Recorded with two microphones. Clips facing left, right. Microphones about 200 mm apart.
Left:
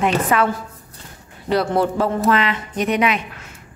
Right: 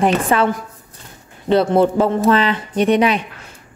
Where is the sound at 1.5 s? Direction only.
25° right (ahead or behind).